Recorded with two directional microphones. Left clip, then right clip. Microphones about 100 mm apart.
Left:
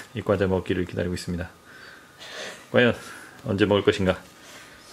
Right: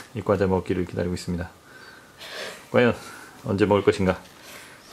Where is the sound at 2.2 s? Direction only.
25° right (ahead or behind).